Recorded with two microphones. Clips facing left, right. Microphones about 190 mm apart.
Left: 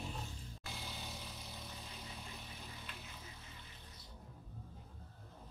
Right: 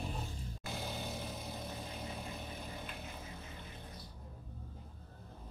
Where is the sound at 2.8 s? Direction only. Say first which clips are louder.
Right 6 dB; 55° right (ahead or behind).